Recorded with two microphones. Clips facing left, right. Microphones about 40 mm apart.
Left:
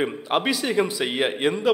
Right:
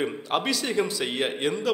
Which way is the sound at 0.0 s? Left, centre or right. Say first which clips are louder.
Left 3 dB; centre.